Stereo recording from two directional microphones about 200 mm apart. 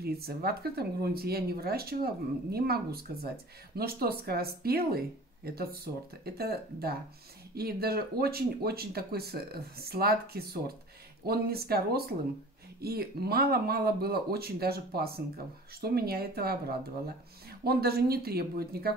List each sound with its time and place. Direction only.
0.0 s speech: 50° right (ahead or behind)